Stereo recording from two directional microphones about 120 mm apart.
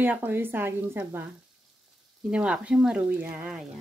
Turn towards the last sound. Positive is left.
turn(degrees=-15)  # may be behind; listen again after turning